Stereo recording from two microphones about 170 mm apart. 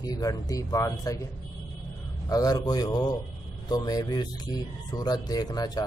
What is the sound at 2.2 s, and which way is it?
Speech, 20° left (ahead or behind).